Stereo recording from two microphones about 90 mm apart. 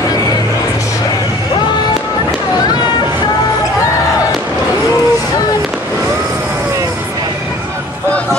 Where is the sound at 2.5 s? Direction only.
50° left (ahead or behind).